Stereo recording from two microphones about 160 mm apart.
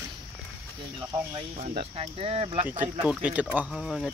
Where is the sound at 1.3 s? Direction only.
40° right (ahead or behind).